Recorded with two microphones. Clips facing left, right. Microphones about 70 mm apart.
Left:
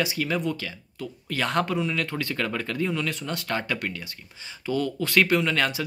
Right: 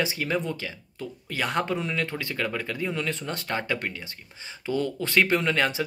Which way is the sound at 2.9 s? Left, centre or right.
Right.